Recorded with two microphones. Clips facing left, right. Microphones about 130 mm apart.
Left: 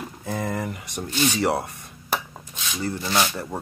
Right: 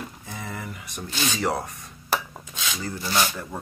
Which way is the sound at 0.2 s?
60° left (ahead or behind).